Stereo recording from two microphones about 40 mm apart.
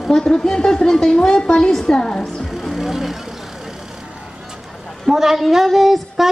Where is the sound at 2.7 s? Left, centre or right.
Centre.